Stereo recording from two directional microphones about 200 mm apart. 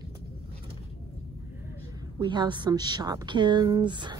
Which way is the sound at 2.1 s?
20° right (ahead or behind).